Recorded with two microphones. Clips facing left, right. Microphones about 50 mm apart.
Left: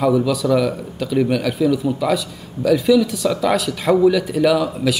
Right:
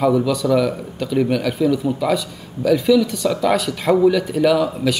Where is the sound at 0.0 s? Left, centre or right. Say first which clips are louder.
Even; centre.